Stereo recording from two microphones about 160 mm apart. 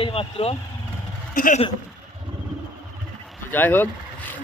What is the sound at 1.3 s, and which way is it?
Speech, 55° left (ahead or behind).